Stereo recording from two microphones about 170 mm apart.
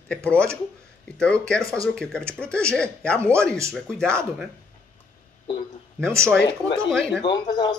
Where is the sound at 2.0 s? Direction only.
5° left (ahead or behind).